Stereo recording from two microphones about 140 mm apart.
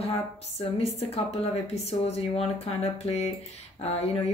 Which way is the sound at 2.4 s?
45° left (ahead or behind).